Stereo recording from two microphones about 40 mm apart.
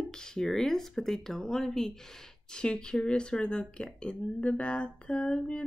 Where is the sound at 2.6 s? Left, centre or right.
Left.